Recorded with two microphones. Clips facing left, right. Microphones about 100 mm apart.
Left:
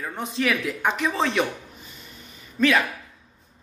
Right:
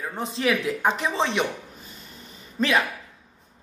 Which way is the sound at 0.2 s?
30° right (ahead or behind).